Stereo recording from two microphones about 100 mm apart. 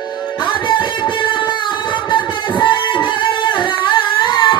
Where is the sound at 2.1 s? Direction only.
55° left (ahead or behind).